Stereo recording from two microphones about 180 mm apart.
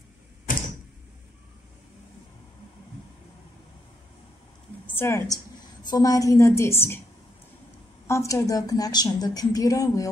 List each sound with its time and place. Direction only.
4.8 s a woman's voice: 10° left (ahead or behind)
8.1 s a woman's voice: 15° left (ahead or behind)